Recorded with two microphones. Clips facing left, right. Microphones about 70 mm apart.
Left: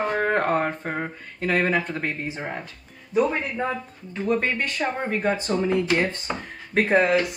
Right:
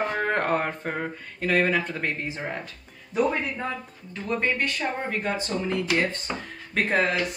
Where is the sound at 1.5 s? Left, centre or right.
Centre.